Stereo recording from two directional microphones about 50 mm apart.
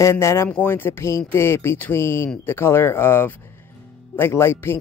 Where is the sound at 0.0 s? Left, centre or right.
Left.